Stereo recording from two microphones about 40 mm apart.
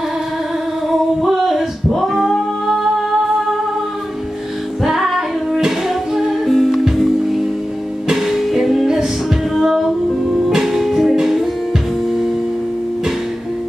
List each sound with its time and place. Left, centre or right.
0.8 s music: centre
2.0 s singing: centre
4.8 s music: centre